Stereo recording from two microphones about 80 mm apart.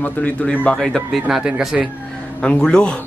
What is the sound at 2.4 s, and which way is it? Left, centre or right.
Speech, centre.